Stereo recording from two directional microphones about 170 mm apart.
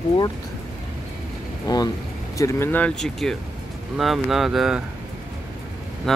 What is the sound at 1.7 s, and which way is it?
Speech, 25° left (ahead or behind).